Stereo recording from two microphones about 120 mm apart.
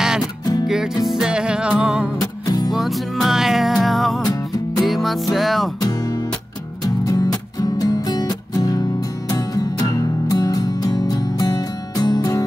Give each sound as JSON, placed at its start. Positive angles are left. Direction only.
{"t": 1.0, "sound": "music", "side_deg": -5}
{"t": 2.1, "sound": "music", "side_deg": 30}
{"t": 2.7, "sound": "music", "side_deg": 0}
{"t": 7.6, "sound": "music", "side_deg": 30}